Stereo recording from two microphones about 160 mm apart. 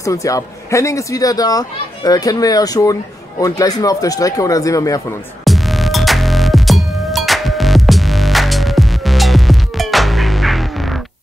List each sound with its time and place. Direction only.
0.0 s speech: 20° left (ahead or behind)
5.4 s music: centre (ahead or behind)